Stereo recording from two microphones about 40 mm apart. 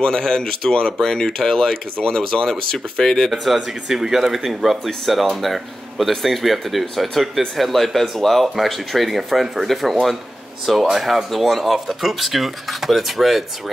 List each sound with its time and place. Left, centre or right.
0.0 s speech: centre
3.5 s speech: centre